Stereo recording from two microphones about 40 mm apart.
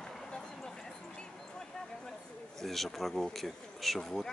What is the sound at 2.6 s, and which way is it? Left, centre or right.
Speech, centre.